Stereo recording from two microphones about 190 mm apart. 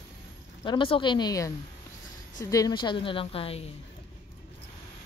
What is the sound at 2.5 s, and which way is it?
A woman's voice, 20° left (ahead or behind).